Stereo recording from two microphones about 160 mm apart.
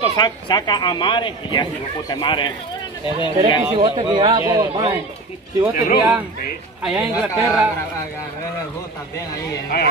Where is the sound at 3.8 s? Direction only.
30° right (ahead or behind).